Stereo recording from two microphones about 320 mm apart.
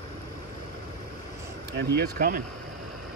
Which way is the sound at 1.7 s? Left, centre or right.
Right.